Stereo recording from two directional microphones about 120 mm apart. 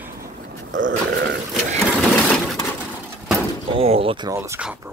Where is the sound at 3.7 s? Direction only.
50° right (ahead or behind).